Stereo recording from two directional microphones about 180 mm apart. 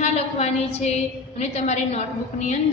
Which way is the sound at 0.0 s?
40° left (ahead or behind).